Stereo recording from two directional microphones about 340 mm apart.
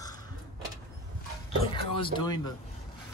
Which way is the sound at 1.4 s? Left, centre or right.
Centre.